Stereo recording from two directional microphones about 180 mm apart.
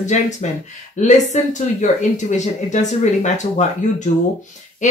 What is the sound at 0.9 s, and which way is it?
Speech, 40° left (ahead or behind).